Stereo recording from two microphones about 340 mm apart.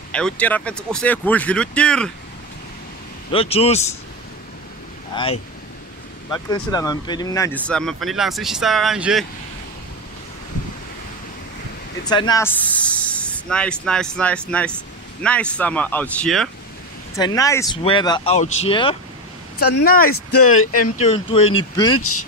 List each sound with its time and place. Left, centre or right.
0.1 s speech: centre
3.3 s speech: centre
5.1 s speech: centre
6.5 s speech: centre
12.0 s speech: centre
19.8 s speech: left
20.6 s speech: left
21.0 s speech: centre